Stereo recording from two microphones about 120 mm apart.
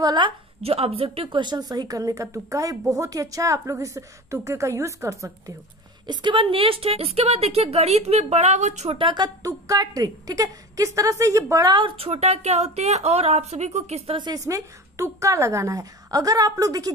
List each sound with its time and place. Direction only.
0.0 s a woman's voice: 35° right (ahead or behind)
0.6 s a woman's voice: 55° right (ahead or behind); by 5.3 s 25° right (ahead or behind)
6.0 s a woman's voice: 45° right (ahead or behind); by 8.9 s 75° right (ahead or behind)
8.9 s a woman's voice: 45° right (ahead or behind)
11.8 s a woman's voice: 55° right (ahead or behind)
14.1 s a woman's voice: 35° right (ahead or behind)
14.4 s a woman's voice: 25° right (ahead or behind)